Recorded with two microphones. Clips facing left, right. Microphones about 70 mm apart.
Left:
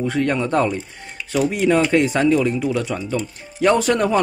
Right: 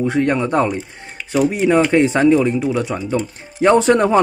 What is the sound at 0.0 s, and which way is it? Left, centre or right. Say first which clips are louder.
Speech: right 3 dB; right.